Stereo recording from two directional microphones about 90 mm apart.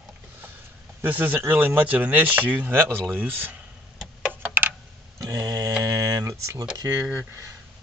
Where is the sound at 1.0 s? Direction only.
20° right (ahead or behind).